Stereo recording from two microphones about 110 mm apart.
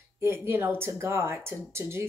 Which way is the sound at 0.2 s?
20° right (ahead or behind).